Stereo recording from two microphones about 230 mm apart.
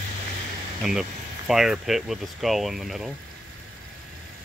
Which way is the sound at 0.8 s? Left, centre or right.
Centre.